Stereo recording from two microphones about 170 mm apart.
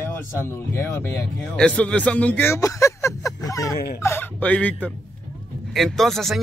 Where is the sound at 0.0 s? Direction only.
15° left (ahead or behind).